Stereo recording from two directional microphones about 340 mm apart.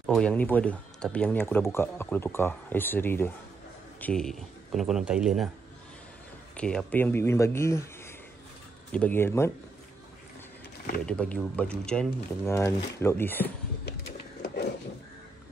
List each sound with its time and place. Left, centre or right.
0.0 s speech: centre
6.5 s speech: centre
11.1 s speech: centre
13.8 s a sound: left